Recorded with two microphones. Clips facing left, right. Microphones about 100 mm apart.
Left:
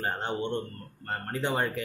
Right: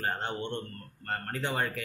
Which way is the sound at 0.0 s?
15° left (ahead or behind).